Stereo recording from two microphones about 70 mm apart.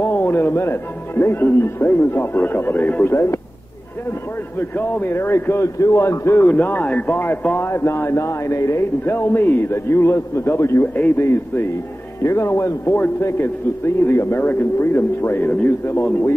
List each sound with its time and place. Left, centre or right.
0.0 s a man's voice: left
4.6 s a man's voice: left
6.4 s speech: left
7.2 s a man's voice: left
9.1 s a man's voice: left